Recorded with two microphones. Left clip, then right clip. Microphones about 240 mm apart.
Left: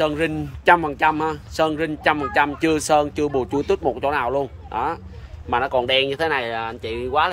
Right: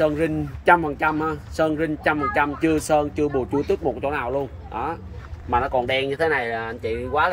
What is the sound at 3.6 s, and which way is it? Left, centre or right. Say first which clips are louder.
Speech: left 3 dB; centre.